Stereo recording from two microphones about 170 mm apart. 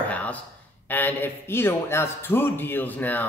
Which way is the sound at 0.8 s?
10° left (ahead or behind).